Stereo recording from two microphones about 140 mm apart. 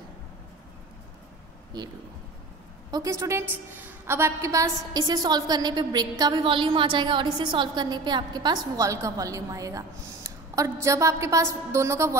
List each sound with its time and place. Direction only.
1.7 s a woman's voice: 30° right (ahead or behind)